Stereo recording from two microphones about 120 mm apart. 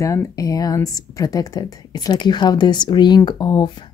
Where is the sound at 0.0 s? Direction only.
30° left (ahead or behind).